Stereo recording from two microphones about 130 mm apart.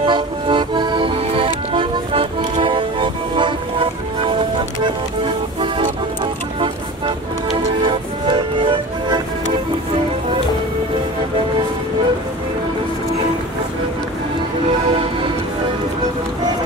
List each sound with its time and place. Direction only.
0.0 s music: 40° right (ahead or behind)
7.5 s music: 40° right (ahead or behind)